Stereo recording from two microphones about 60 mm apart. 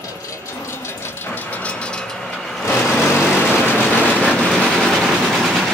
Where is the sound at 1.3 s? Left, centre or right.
Left.